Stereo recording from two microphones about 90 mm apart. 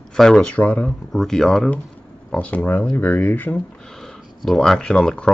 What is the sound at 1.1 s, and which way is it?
Speech, 5° left (ahead or behind).